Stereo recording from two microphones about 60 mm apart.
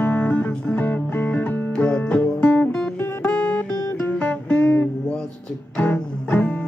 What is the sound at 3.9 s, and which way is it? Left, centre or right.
Music, left.